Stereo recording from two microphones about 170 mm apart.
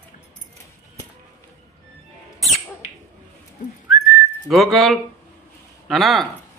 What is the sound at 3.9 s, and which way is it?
Whistling, centre (ahead or behind).